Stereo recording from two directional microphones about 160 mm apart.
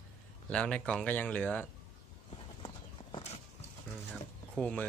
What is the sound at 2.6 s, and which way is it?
Clip-clop, 35° left (ahead or behind).